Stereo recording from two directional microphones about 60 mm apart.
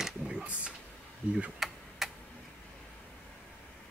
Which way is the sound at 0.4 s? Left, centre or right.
Centre.